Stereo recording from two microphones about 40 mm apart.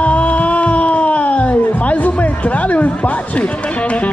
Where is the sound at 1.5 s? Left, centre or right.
Left.